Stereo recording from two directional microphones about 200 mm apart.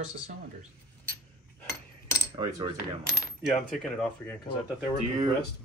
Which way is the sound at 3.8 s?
5° left (ahead or behind).